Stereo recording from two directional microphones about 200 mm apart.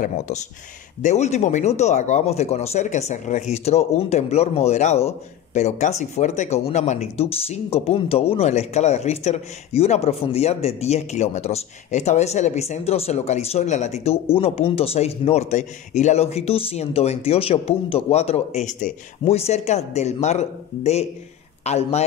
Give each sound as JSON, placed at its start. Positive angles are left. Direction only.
{"t": 1.0, "sound": "speech", "side_deg": 35}